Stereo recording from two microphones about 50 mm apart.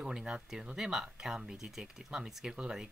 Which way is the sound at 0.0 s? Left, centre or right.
Centre.